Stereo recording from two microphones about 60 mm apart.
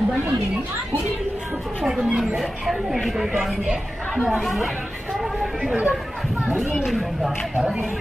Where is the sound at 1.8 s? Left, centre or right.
Centre.